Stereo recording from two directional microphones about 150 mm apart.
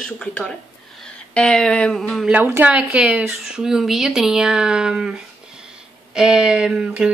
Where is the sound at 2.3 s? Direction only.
10° right (ahead or behind).